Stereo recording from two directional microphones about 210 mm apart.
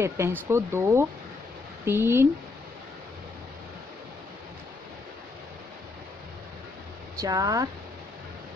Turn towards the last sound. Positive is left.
turn(degrees=-15)  # may be behind; listen again after turning